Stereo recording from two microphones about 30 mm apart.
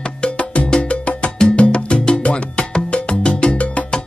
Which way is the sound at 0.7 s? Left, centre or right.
Left.